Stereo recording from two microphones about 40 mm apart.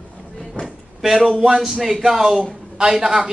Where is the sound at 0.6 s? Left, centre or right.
Centre.